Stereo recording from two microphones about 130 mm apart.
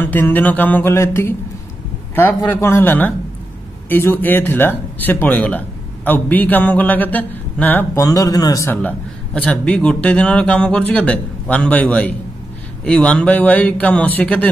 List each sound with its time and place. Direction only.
0.0 s a man's voice: 15° left (ahead or behind)
8.6 s a man's voice: 10° left (ahead or behind)